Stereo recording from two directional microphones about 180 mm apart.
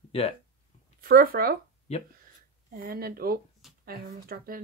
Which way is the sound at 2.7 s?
55° right (ahead or behind).